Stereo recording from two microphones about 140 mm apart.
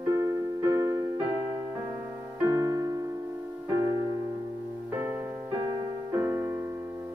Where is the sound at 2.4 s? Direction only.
20° right (ahead or behind).